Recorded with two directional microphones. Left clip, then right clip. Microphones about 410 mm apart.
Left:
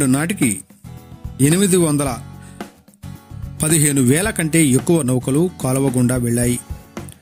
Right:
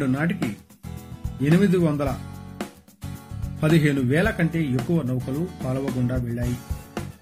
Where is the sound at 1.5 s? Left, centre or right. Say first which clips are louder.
Left 3 dB; left.